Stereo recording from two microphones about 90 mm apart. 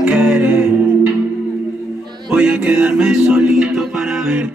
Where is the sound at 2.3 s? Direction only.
15° right (ahead or behind).